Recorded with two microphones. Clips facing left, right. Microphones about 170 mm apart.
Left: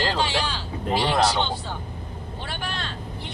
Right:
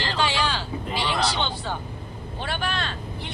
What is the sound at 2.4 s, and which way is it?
Vehicle, 70° right (ahead or behind).